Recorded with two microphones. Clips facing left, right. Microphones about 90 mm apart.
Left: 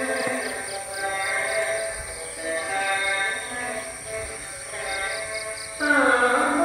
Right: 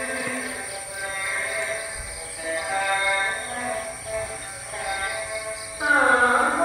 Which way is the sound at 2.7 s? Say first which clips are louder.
Right 2 dB; 5° right (ahead or behind).